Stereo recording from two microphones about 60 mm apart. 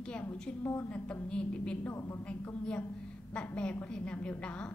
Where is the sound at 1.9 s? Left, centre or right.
Left.